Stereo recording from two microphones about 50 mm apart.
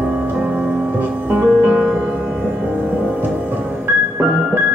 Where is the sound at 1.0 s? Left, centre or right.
Right.